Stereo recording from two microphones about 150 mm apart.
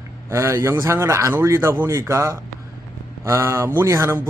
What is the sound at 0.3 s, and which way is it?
Speech, 20° right (ahead or behind).